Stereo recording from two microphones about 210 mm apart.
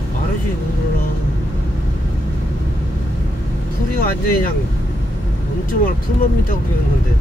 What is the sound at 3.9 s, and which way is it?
Speech, 45° left (ahead or behind).